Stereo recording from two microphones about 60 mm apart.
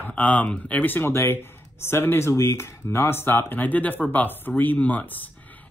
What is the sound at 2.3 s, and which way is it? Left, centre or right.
Speech, left.